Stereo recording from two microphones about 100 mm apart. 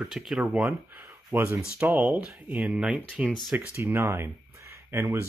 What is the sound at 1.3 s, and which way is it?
Speech, 25° right (ahead or behind).